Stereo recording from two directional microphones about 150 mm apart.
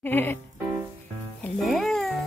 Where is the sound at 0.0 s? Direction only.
15° left (ahead or behind).